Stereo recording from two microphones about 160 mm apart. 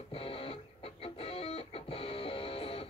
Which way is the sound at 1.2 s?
35° left (ahead or behind).